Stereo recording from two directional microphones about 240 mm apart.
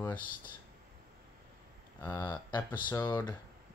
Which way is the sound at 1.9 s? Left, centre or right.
Centre.